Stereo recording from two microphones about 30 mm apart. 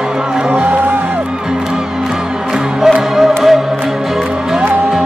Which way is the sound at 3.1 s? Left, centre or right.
Centre.